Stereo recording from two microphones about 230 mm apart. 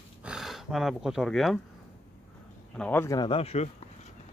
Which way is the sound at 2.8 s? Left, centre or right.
Centre.